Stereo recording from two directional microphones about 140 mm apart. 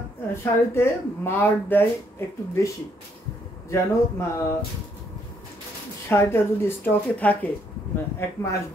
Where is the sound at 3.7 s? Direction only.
20° left (ahead or behind).